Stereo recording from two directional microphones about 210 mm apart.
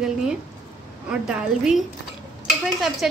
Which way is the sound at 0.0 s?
Centre (ahead or behind).